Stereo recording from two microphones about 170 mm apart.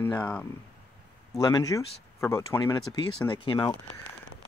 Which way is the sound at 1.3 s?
20° left (ahead or behind).